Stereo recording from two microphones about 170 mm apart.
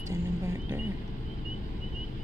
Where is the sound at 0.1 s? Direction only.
15° right (ahead or behind).